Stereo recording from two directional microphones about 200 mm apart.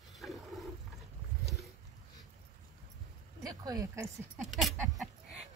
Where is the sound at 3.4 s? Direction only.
20° right (ahead or behind).